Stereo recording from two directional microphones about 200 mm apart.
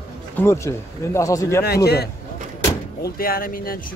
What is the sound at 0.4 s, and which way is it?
Speech, 15° left (ahead or behind).